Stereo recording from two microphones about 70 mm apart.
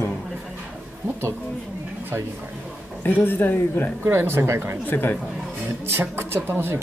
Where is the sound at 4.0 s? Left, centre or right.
Right.